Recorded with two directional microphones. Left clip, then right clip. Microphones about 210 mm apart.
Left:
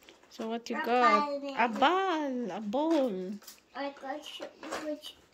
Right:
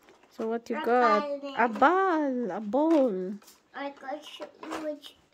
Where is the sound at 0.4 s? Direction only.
20° right (ahead or behind).